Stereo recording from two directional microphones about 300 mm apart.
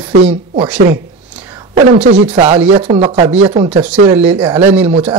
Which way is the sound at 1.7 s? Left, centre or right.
Right.